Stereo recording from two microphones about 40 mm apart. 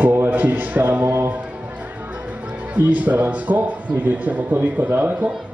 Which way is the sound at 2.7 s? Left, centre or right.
Right.